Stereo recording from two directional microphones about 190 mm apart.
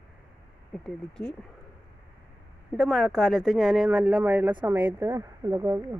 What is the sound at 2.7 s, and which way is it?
A woman's voice, centre (ahead or behind).